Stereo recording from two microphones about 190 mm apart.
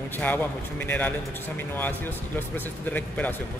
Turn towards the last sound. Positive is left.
turn(degrees=10)  # may be behind; listen again after turning